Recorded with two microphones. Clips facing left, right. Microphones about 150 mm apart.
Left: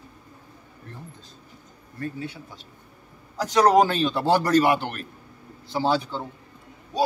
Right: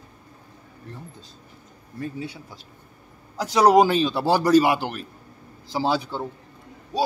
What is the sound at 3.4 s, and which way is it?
A man's voice, 10° right (ahead or behind).